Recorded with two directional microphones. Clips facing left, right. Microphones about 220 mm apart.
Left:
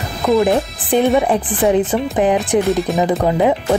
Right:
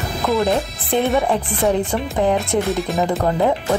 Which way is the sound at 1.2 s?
20° left (ahead or behind).